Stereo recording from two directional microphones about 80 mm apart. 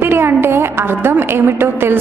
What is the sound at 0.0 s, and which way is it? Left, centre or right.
A woman's voice, right.